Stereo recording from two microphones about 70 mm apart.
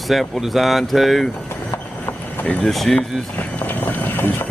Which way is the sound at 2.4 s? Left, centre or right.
Centre.